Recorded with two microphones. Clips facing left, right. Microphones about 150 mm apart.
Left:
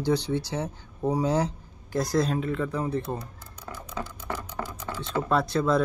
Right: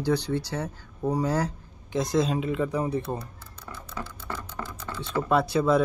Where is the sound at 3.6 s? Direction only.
10° left (ahead or behind).